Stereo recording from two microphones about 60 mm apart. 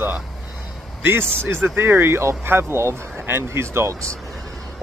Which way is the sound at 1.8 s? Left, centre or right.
Right.